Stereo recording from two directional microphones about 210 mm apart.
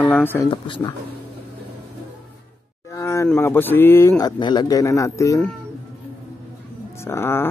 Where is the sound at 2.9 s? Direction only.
15° left (ahead or behind).